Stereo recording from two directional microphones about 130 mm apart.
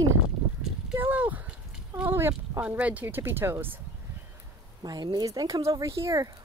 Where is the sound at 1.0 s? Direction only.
15° right (ahead or behind).